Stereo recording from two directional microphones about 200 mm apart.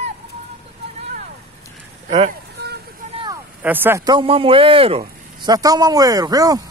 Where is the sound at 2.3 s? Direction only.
55° right (ahead or behind).